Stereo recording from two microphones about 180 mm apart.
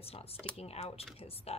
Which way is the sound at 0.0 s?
35° left (ahead or behind).